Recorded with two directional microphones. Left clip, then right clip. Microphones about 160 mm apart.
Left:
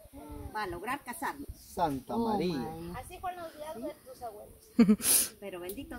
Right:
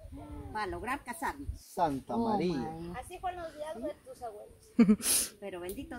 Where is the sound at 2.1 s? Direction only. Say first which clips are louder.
Even; 15° right (ahead or behind).